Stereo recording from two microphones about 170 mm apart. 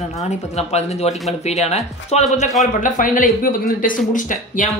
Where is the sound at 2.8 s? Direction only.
50° left (ahead or behind).